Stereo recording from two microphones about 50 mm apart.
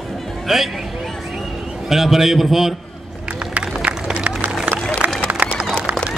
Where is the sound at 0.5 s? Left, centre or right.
Centre.